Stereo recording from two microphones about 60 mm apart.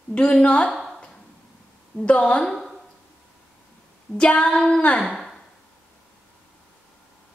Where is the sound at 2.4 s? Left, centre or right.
Centre.